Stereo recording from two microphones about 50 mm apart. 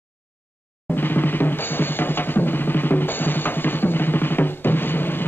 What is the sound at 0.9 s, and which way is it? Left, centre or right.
Drum, left.